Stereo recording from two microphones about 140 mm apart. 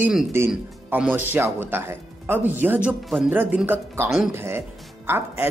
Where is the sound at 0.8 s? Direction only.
15° right (ahead or behind).